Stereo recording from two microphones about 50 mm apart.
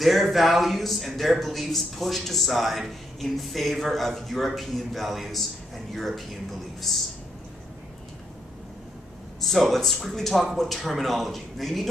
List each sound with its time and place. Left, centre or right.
0.0 s speech: centre
9.4 s speech: centre